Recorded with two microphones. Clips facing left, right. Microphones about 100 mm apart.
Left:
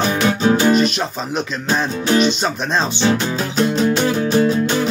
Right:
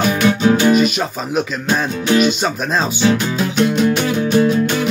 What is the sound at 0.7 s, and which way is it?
Music, 5° right (ahead or behind).